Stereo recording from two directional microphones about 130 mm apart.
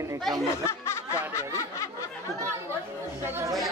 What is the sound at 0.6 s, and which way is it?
Snicker, 20° left (ahead or behind).